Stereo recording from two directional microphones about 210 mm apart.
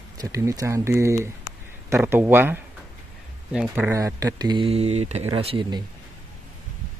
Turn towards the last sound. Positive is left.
turn(degrees=-25)  # may be behind; listen again after turning